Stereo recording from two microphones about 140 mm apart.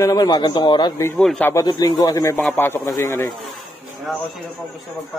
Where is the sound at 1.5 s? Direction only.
25° left (ahead or behind).